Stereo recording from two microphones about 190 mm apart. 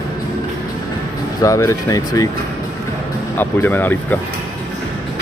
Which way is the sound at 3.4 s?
10° left (ahead or behind).